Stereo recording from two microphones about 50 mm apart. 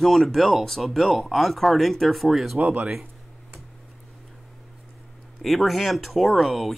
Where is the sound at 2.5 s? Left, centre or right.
Right.